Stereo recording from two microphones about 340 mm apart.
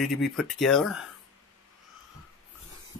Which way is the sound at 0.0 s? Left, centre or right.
Centre.